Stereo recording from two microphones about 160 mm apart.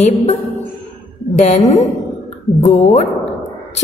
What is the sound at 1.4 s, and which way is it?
Speech, 45° left (ahead or behind).